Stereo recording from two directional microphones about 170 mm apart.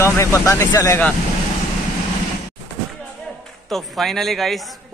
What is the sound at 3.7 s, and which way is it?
Speech, 5° left (ahead or behind).